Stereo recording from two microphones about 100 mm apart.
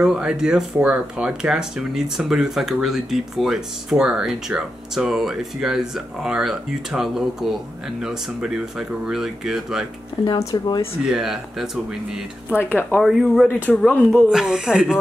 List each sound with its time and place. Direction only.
0.0 s speech: 5° right (ahead or behind)
10.4 s speech: 40° left (ahead or behind)
11.1 s speech: 5° right (ahead or behind)
14.3 s speech: 5° right (ahead or behind)